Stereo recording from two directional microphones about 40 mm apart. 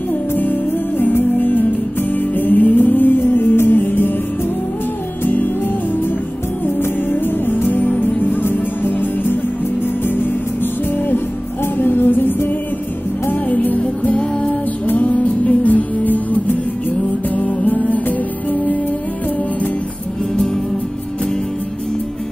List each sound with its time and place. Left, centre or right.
0.4 s music: left
5.2 s music: left
6.6 s music: left
10.6 s music: left
14.1 s music: left
17.6 s music: left